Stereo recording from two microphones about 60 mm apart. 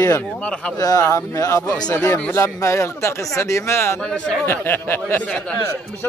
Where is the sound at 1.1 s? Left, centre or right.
Left.